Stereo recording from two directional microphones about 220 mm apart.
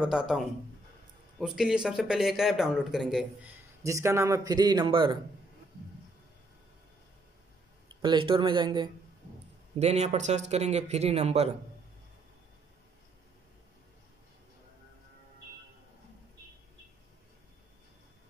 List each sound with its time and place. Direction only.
0.0 s speech: 5° right (ahead or behind)
1.4 s speech: centre (ahead or behind)
3.8 s a man's voice: 10° right (ahead or behind)
8.0 s speech: 20° right (ahead or behind)